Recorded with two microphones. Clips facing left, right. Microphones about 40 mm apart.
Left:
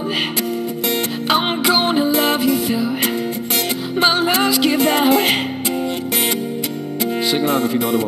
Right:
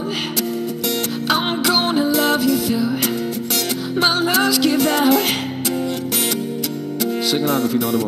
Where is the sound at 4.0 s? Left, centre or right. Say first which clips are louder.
Left 1 dB; left.